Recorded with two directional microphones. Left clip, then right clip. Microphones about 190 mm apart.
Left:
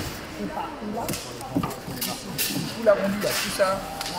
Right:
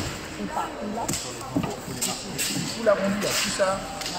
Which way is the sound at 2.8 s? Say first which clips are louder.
Left 2 dB; 15° left (ahead or behind).